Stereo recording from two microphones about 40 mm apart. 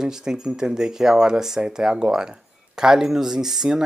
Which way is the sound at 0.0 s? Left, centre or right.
Centre.